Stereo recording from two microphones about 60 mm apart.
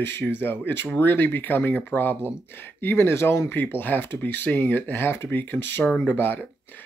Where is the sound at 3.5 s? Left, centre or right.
Left.